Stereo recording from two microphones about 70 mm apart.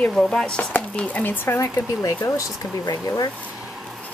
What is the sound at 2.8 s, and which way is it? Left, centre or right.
Speech, left.